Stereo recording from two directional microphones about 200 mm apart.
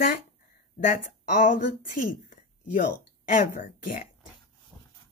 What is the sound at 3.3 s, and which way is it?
Speech, 40° left (ahead or behind).